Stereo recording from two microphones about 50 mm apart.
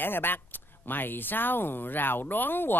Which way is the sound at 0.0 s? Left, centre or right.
Left.